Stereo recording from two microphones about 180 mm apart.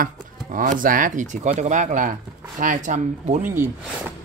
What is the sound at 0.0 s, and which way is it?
Speech, 45° right (ahead or behind).